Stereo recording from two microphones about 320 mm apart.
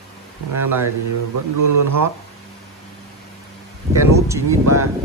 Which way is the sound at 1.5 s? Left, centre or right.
Right.